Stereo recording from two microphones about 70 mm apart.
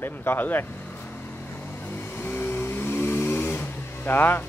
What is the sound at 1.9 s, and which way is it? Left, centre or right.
Vehicle, left.